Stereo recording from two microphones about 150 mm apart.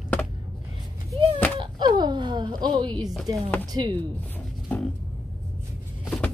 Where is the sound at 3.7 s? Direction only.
25° right (ahead or behind).